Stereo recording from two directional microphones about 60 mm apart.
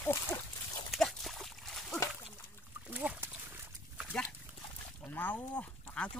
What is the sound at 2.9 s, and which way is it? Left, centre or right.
Speech, right.